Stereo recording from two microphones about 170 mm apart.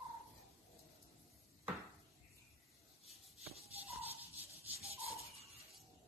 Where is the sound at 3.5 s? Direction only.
35° right (ahead or behind).